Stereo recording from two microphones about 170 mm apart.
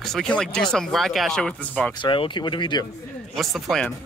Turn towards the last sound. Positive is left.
turn(degrees=0)  # may be behind; listen again after turning